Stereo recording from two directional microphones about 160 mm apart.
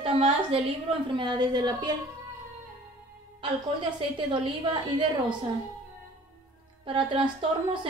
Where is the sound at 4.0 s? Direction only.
30° right (ahead or behind).